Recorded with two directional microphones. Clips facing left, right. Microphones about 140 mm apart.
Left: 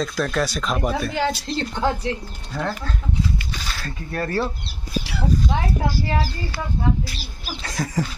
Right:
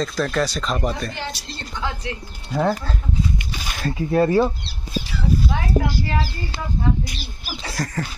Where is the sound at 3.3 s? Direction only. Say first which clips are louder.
Right 1 dB; 15° right (ahead or behind).